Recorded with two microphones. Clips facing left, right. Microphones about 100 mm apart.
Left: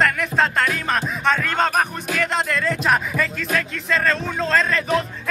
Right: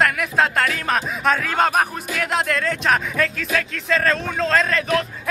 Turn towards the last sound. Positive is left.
turn(degrees=0)  # may be behind; listen again after turning